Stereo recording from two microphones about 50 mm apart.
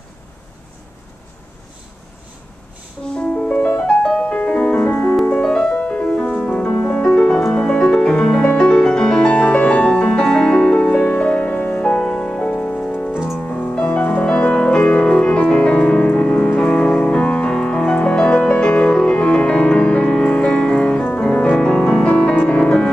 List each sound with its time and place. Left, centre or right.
3.2 s music: left
11.9 s music: centre
22.4 s music: left